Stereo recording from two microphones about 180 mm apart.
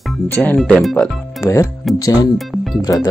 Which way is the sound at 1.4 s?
15° left (ahead or behind).